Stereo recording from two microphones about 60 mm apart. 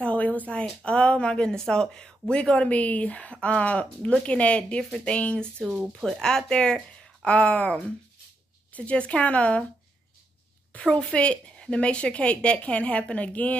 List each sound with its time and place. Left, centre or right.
0.0 s a sound: left
0.8 s speech: centre
5.8 s speech: centre; by 7.7 s left
8.7 s speech: left
10.7 s speech: left